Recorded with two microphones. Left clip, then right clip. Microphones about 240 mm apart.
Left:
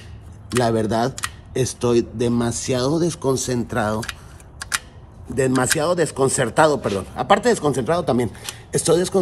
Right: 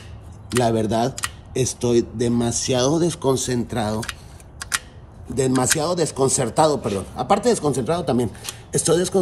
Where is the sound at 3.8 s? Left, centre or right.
Centre.